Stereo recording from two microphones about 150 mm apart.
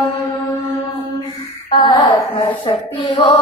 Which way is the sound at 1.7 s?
30° left (ahead or behind).